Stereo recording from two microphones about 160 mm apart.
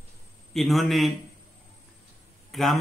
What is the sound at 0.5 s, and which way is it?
Speech, centre (ahead or behind).